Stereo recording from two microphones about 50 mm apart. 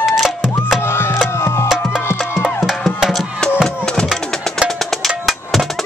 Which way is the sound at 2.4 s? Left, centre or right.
Centre.